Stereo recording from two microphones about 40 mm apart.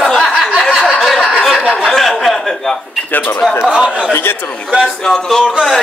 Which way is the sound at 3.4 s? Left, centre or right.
Centre.